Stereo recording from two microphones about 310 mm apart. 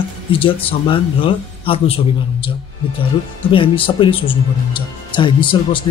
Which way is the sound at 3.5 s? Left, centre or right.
Centre.